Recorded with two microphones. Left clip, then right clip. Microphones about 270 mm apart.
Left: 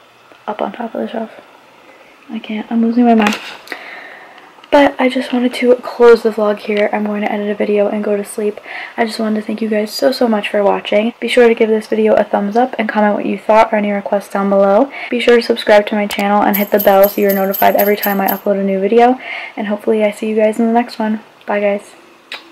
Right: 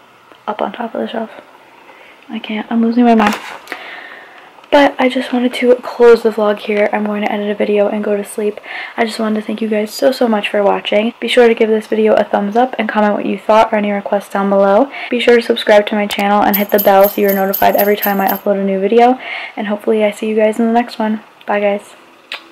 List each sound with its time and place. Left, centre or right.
0.5 s speech: centre
2.3 s speech: centre
3.6 s a sound: centre
4.6 s speech: centre
5.8 s speech: centre
6.4 s speech: centre
14.5 s speech: centre
14.9 s speech: centre